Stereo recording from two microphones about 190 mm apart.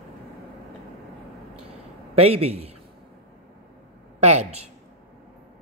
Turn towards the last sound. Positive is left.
turn(degrees=-35)  # may be behind; listen again after turning